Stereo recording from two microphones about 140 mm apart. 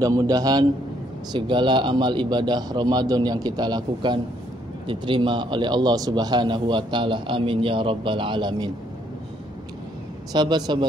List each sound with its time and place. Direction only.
0.0 s a man's voice: 25° right (ahead or behind)
10.3 s a man's voice: 30° right (ahead or behind)